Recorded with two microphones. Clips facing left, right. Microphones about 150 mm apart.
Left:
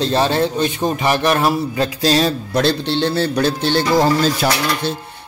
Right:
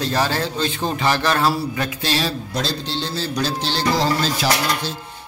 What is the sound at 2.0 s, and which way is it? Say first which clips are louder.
Speech: left 8 dB; 40° left (ahead or behind).